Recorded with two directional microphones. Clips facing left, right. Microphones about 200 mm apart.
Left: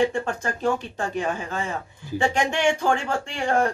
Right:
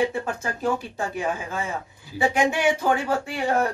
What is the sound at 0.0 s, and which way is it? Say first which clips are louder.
Speech: left 2 dB; 5° right (ahead or behind).